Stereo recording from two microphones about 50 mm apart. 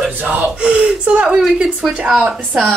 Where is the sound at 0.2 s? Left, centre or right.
Right.